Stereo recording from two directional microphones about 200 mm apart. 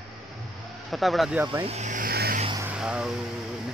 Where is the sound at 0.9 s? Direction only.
Centre (ahead or behind).